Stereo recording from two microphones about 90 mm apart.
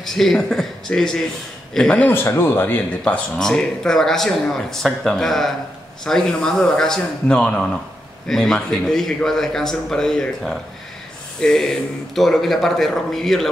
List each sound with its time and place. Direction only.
0.0 s speech: 5° left (ahead or behind)
2.0 s speech: 25° left (ahead or behind)
3.0 s speech: 5° left (ahead or behind)